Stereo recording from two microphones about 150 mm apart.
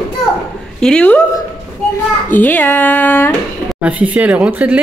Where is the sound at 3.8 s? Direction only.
10° right (ahead or behind).